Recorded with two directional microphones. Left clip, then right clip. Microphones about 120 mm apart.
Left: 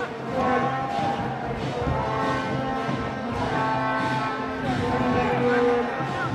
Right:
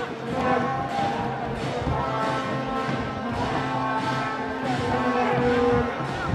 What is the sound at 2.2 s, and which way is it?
Music, 50° right (ahead or behind).